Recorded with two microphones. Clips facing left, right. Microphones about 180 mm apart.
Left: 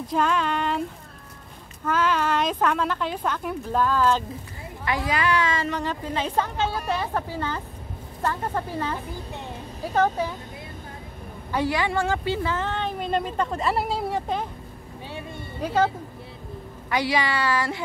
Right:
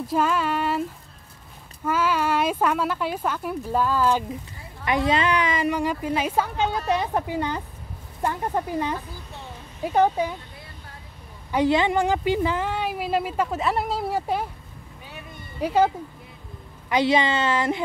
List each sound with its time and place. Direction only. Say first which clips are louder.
0.0 s child singing: right 1 dB; 5° right (ahead or behind)
1.9 s a woman's voice: even; 10° right (ahead or behind)
4.8 s a woman's voice: right 3 dB; 20° right (ahead or behind)
9.9 s a woman's voice: right 2 dB; 15° right (ahead or behind)
11.5 s a woman's voice: right 4 dB; 20° right (ahead or behind)
15.0 s a sound: left 6 dB; 30° left (ahead or behind)
15.6 s a woman's voice: right 2 dB; 10° right (ahead or behind)
16.9 s speech: right 4 dB; 20° right (ahead or behind)